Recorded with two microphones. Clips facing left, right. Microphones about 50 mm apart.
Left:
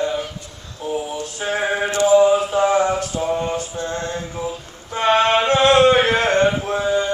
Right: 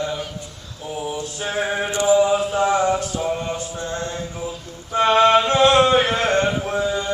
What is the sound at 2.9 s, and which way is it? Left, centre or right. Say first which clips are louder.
Music: left 2 dB; left.